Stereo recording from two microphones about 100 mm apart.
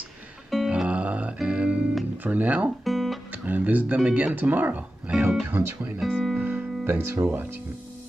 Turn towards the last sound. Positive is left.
turn(degrees=-20)  # may be behind; listen again after turning